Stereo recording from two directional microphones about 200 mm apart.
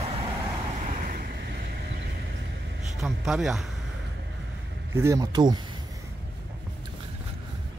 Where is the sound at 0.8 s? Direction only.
45° right (ahead or behind).